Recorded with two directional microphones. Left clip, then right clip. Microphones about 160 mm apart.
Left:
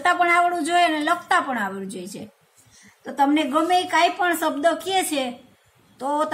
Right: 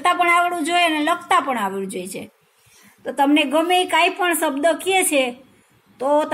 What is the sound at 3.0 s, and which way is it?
A woman's voice, 15° right (ahead or behind).